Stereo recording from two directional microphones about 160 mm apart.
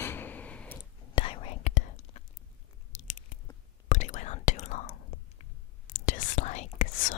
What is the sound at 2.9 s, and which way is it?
Biting, 55° left (ahead or behind).